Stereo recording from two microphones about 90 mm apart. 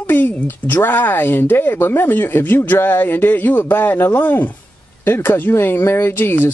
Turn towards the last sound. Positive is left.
turn(degrees=25)  # may be behind; listen again after turning